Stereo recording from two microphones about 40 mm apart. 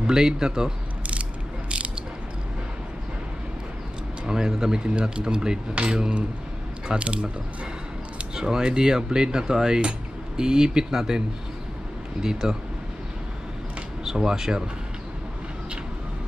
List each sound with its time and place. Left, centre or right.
0.0 s speech: centre
4.3 s speech: centre
5.8 s cutlery: right
7.0 s speech: right
8.4 s speech: centre
14.0 s speech: centre